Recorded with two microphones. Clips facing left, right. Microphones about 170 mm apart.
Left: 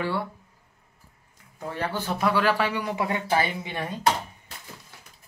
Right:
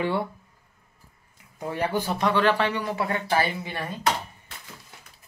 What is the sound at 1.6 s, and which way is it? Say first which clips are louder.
Speech: right 3 dB; 15° right (ahead or behind).